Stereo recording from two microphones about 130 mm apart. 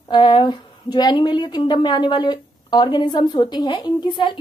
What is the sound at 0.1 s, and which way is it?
A woman's voice, 35° left (ahead or behind).